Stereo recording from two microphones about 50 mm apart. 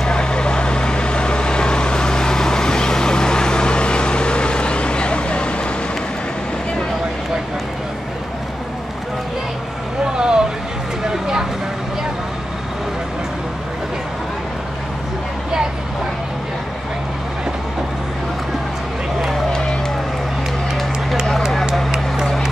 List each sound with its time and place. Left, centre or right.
0.0 s vehicle: centre
10.1 s a sound: centre
11.1 s vehicle: centre